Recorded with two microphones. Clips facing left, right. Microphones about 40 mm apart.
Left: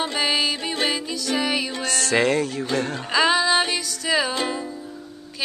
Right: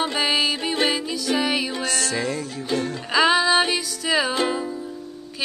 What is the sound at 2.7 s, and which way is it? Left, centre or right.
Music, left.